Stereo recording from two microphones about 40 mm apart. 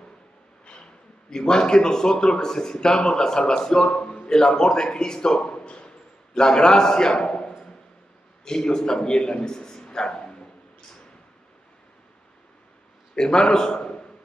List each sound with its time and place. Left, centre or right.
1.3 s a man's voice: centre
13.1 s a man's voice: left